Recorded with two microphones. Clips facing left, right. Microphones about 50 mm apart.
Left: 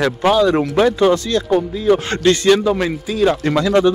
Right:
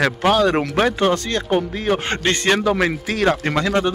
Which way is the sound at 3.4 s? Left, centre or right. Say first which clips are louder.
Left 4 dB; right.